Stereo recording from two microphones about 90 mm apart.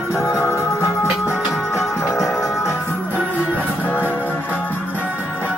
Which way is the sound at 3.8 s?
20° left (ahead or behind).